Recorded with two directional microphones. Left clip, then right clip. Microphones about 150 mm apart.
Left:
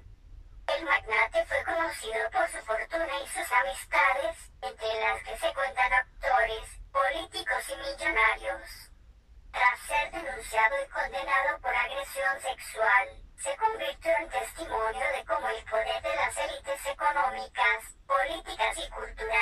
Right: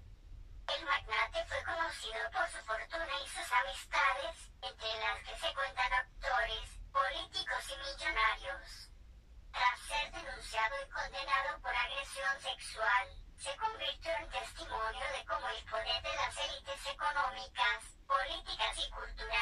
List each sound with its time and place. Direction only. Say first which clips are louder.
0.7 s music: left 8 dB; 40° left (ahead or behind)